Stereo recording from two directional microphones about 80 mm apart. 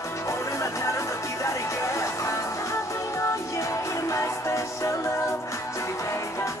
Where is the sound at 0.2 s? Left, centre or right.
Left.